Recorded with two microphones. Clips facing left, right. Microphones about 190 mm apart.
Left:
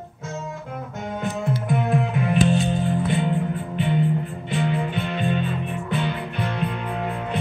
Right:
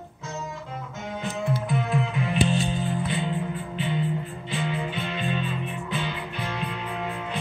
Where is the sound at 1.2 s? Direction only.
50° left (ahead or behind).